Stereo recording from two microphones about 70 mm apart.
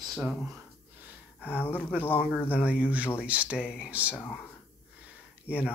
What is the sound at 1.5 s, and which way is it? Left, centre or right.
Speech, left.